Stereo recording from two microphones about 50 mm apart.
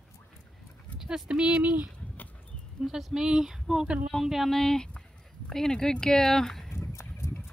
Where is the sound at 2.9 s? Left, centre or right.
Centre.